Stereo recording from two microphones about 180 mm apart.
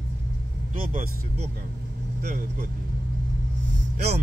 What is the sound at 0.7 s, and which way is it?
Speech, 50° right (ahead or behind).